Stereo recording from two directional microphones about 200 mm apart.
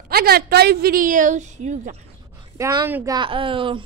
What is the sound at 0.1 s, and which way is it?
A woman's voice, 50° right (ahead or behind).